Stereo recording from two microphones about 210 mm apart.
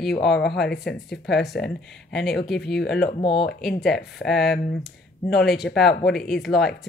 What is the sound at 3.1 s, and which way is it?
Speech, 25° left (ahead or behind).